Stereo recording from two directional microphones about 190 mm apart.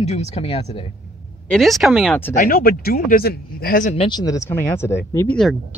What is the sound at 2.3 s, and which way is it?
Speech, 50° left (ahead or behind).